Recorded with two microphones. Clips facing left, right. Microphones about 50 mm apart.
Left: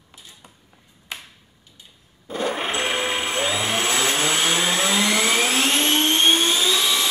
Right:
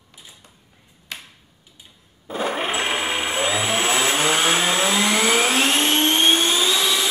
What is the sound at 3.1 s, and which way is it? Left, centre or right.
Vehicle, centre.